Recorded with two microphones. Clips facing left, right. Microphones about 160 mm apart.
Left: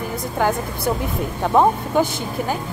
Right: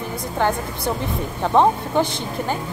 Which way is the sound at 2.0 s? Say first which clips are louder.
Left 2 dB; 10° left (ahead or behind).